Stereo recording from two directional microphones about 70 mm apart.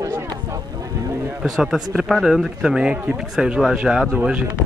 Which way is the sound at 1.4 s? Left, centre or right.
Centre.